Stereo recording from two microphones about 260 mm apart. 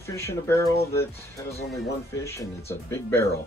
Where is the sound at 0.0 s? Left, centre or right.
Centre.